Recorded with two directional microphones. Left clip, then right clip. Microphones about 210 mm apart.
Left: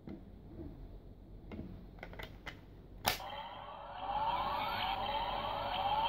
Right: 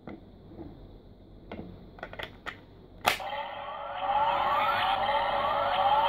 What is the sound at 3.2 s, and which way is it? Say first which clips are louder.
Emergency vehicle: right 10 dB; 15° right (ahead or behind).